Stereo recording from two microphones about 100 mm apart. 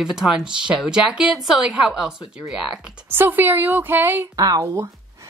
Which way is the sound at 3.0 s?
20° right (ahead or behind).